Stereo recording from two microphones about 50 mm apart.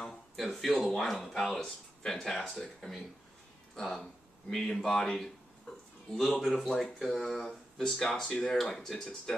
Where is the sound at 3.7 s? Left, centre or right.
Centre.